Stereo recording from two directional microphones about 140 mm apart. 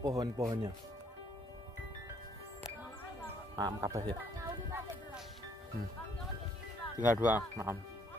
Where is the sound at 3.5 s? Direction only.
25° right (ahead or behind).